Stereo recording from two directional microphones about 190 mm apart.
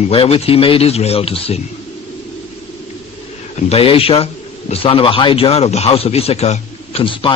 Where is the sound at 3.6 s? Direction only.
30° left (ahead or behind).